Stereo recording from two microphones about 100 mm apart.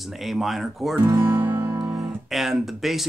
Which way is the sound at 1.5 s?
45° right (ahead or behind).